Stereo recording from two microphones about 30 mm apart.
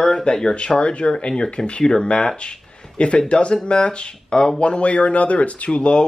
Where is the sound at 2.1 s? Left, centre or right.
Left.